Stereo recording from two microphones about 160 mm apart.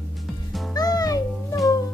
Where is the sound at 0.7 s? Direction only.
25° left (ahead or behind).